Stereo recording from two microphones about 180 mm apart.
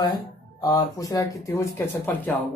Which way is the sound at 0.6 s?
20° left (ahead or behind).